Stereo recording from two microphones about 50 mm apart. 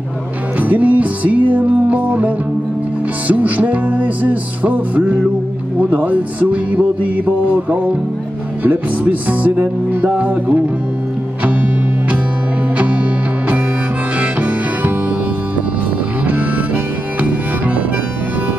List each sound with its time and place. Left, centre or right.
0.6 s music: right
5.8 s speech: right
8.6 s music: right
14.2 s harmonica: right
16.3 s harmonica: right